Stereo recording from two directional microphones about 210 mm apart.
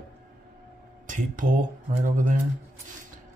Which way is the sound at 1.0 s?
40° right (ahead or behind).